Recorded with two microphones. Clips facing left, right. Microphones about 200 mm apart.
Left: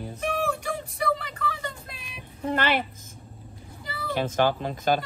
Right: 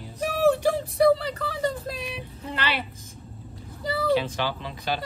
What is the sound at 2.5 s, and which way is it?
Speech, 50° left (ahead or behind).